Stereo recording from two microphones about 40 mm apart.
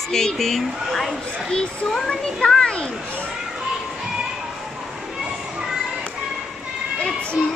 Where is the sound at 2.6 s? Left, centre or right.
Left.